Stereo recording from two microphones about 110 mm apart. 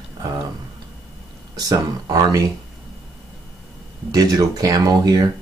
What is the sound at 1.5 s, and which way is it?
Speech, 35° right (ahead or behind).